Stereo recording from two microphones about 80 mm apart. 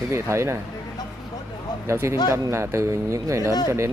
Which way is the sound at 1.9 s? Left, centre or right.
Right.